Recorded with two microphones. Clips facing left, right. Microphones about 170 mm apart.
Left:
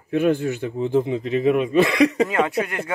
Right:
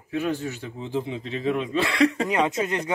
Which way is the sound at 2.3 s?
20° right (ahead or behind).